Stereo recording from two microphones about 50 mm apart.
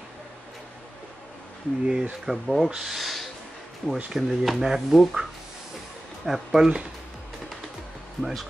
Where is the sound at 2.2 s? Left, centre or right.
Centre.